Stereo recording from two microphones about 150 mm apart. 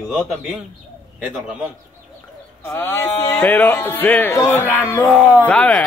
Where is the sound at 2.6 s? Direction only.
15° left (ahead or behind).